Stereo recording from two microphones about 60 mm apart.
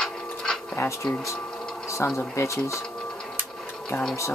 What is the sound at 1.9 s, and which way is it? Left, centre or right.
Speech, left.